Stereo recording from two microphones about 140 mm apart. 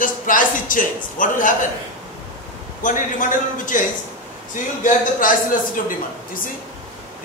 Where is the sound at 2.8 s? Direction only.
70° left (ahead or behind).